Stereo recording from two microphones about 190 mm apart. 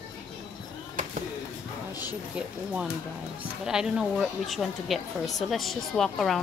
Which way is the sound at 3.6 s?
5° right (ahead or behind).